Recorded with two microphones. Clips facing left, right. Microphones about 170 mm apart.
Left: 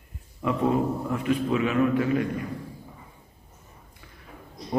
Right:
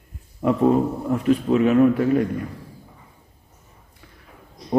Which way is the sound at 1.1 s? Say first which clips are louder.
Right 7 dB; 40° right (ahead or behind).